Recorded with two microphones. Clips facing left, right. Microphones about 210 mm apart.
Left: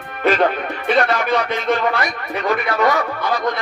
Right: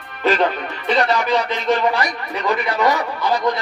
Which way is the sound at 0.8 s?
55° left (ahead or behind).